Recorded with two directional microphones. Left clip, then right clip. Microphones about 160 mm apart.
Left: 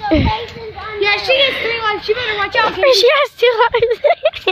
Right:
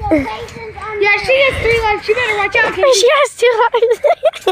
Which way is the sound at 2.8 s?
20° right (ahead or behind).